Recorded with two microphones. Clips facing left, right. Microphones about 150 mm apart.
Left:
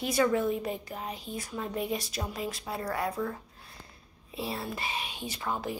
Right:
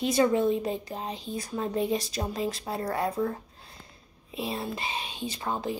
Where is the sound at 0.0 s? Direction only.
25° right (ahead or behind).